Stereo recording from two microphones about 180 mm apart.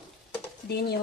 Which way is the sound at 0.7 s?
60° left (ahead or behind).